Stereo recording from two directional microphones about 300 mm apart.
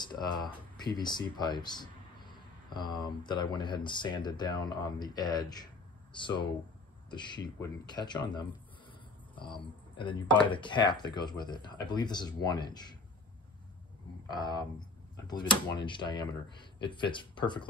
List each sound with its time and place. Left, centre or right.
0.0 s speech: centre
14.3 s speech: centre